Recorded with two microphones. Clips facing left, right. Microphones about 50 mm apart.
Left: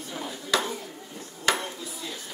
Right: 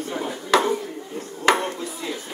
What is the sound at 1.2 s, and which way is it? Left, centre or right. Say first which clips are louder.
Dishes: right 7 dB; right.